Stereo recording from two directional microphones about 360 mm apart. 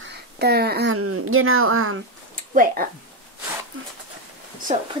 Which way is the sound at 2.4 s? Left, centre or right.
Right.